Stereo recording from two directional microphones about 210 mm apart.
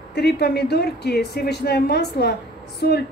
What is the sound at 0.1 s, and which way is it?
A woman's voice, 50° left (ahead or behind).